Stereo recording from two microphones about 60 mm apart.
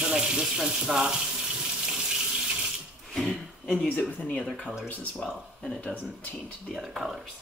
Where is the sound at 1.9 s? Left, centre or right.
Centre.